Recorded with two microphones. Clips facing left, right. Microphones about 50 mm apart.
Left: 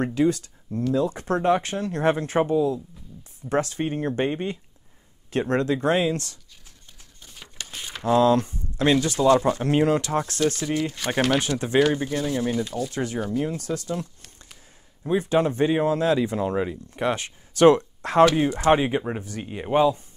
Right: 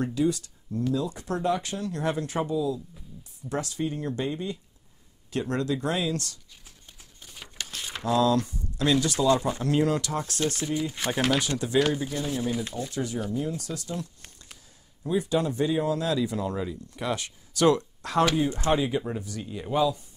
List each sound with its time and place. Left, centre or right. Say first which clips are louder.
0.0 s speech: left 4 dB; left
7.2 s crumpling: right 1 dB; centre
7.7 s a sound: left 1 dB; centre
8.1 s speech: left 5 dB; left
10.4 s speech: left 3 dB; right
11.3 s speech: left 3 dB; left
12.2 s speech: left 4 dB; centre
12.9 s speech: left 2 dB; left
15.0 s speech: left 4 dB; left